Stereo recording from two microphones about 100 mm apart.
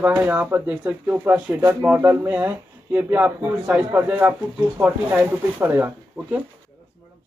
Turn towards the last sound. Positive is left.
turn(degrees=-20)  # may be behind; listen again after turning